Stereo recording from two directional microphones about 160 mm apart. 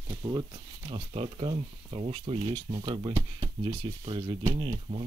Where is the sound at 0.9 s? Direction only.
35° right (ahead or behind).